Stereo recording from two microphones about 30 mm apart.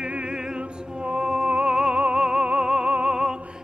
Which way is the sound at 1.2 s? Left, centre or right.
Right.